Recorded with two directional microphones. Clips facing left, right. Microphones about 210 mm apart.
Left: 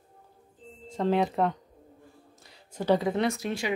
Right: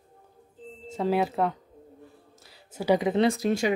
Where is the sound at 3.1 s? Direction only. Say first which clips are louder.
Right 5 dB; 30° right (ahead or behind).